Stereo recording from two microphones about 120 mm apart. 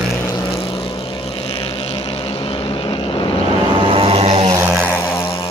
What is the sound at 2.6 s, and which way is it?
Vehicle, 45° left (ahead or behind).